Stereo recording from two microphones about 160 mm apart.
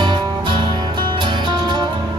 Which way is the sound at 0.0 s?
30° right (ahead or behind).